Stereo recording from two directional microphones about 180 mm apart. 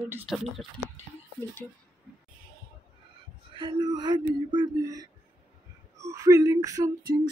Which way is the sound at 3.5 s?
25° right (ahead or behind).